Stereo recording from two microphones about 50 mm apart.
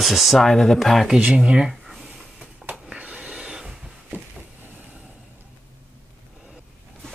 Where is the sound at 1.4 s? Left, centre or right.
Centre.